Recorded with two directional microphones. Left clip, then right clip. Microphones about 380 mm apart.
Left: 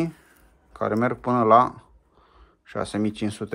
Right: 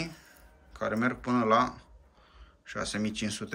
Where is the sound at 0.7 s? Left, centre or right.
Centre.